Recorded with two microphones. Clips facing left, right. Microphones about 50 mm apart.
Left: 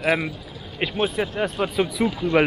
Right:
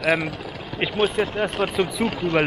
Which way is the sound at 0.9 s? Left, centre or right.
Right.